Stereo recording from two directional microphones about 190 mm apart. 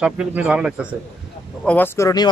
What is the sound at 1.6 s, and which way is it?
Speech, 10° left (ahead or behind).